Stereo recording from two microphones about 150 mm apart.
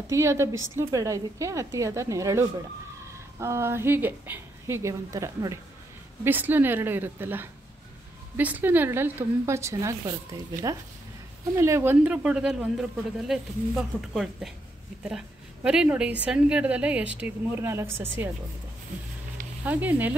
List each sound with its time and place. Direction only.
0.1 s a woman's voice: 20° right (ahead or behind)
11.5 s a woman's voice: 15° right (ahead or behind)
19.6 s a woman's voice: 10° right (ahead or behind)